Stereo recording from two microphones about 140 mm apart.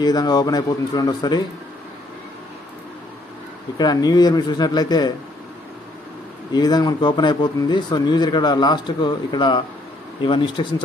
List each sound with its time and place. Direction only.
0.0 s speech: 30° left (ahead or behind)
3.7 s speech: 30° left (ahead or behind)
6.5 s speech: 30° left (ahead or behind)